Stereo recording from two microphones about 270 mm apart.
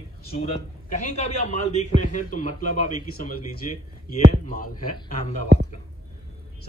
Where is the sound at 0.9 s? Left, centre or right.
Left.